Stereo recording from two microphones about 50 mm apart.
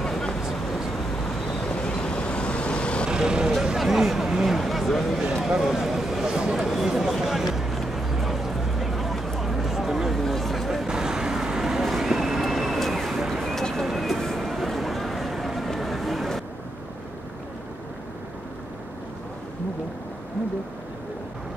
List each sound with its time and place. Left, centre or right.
0.4 s vehicle: centre
1.6 s vehicle: centre
3.1 s speech: centre
3.5 s speech: centre
5.5 s a sound: centre
10.9 s vehicle: centre
13.8 s a sound: centre